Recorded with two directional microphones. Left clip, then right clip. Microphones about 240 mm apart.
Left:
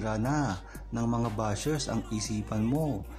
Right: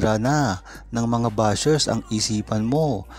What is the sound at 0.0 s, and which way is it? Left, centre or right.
Speech, right.